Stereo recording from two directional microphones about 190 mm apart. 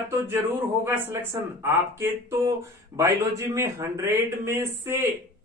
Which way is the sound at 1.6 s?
15° right (ahead or behind).